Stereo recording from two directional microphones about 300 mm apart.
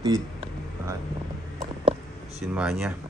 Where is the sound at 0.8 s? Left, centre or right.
Centre.